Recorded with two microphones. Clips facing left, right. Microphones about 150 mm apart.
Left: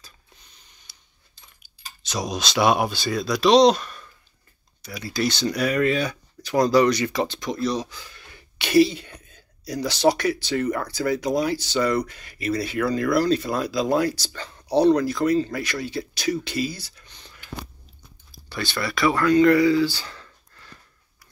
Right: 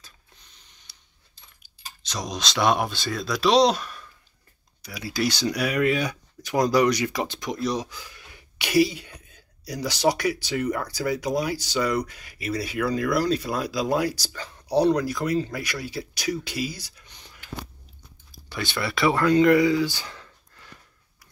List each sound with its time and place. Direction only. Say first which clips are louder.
0.9 s coin: left 1 dB; 10° left (ahead or behind)
1.6 s speech: even; 10° left (ahead or behind); by 17.4 s 10° right (ahead or behind)
18.5 s speech: left 1 dB; 20° right (ahead or behind)
20.1 s a sound: even; 10° right (ahead or behind)